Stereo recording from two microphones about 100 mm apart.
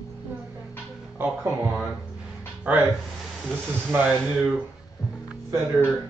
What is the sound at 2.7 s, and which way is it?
Speech, 10° right (ahead or behind).